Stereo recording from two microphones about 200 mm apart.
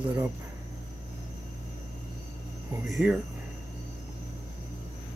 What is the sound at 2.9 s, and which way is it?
Speech, centre (ahead or behind).